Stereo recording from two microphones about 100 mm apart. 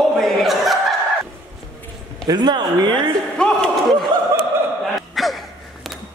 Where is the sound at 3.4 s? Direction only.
10° left (ahead or behind).